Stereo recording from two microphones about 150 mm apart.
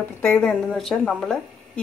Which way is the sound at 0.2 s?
10° left (ahead or behind).